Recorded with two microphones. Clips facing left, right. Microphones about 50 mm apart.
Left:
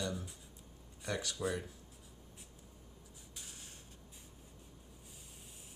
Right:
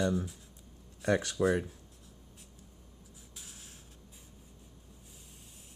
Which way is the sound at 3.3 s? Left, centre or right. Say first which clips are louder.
Even; centre.